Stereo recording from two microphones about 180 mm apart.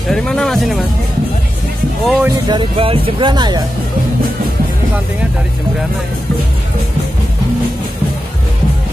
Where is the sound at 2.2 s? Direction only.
20° right (ahead or behind).